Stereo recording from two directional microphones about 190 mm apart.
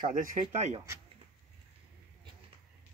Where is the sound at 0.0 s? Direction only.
45° right (ahead or behind).